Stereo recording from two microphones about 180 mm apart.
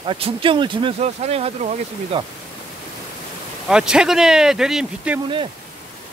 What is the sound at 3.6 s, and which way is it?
Speech, 5° right (ahead or behind).